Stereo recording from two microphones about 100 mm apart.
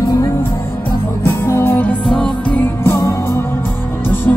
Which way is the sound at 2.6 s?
20° left (ahead or behind).